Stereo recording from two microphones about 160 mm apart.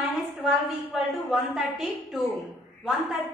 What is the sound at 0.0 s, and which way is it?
A woman's voice, centre (ahead or behind).